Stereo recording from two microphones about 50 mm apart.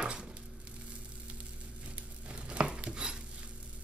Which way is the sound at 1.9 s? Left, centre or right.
Right.